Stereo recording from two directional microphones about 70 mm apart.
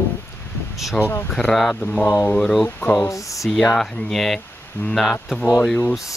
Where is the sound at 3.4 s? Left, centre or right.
Centre.